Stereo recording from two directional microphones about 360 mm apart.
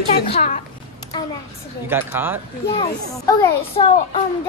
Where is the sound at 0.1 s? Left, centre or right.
Centre.